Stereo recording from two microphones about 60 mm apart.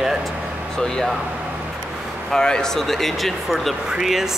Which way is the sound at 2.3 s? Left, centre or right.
Centre.